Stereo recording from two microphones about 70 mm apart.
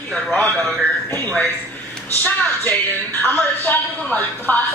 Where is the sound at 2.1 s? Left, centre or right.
Left.